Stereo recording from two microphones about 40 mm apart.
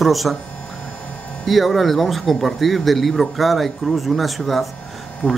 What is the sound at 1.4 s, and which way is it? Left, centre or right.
Speech, centre.